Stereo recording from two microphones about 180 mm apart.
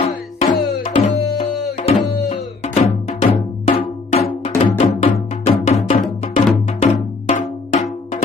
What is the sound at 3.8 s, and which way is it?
Drum, 35° left (ahead or behind).